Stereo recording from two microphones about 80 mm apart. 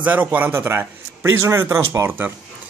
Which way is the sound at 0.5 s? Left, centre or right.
Right.